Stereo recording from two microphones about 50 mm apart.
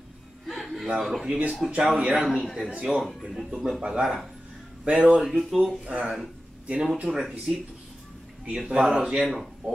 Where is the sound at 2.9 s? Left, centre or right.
Centre.